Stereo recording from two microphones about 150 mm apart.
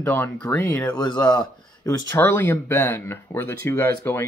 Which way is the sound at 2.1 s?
15° left (ahead or behind).